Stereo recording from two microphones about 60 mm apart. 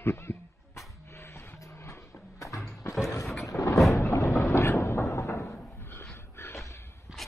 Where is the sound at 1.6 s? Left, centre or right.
Left.